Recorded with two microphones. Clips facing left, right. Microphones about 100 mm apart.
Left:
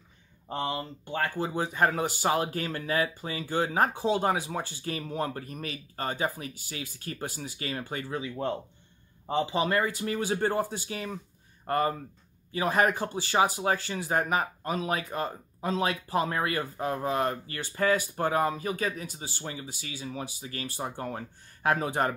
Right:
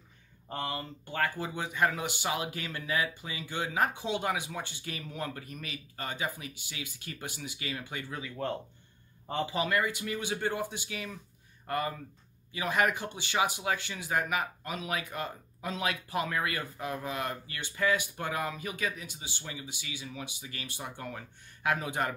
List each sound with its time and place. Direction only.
0.5 s speech: 25° left (ahead or behind); by 8.2 s 40° left (ahead or behind)
8.2 s speech: 20° left (ahead or behind); by 22.1 s 35° left (ahead or behind)